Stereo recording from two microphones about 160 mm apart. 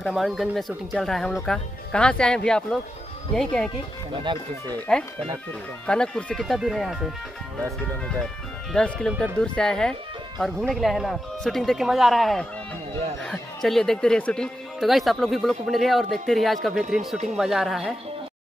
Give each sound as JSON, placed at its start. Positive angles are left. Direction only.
{"t": 0.0, "sound": "speech", "side_deg": 0}
{"t": 4.2, "sound": "speech", "side_deg": -30}
{"t": 5.9, "sound": "speech", "side_deg": 5}
{"t": 8.7, "sound": "speech", "side_deg": 5}